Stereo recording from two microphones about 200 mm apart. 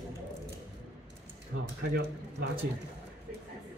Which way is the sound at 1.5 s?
80° right.